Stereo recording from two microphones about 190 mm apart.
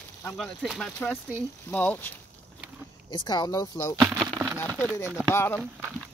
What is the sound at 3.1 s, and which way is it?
Speech, 25° left (ahead or behind).